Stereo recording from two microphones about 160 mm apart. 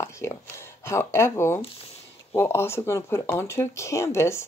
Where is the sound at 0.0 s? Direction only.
15° left (ahead or behind).